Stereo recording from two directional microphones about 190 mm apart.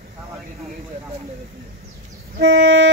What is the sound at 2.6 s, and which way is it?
Music, 80° right.